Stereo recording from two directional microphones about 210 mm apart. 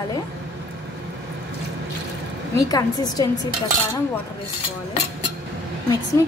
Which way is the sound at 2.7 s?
15° left (ahead or behind).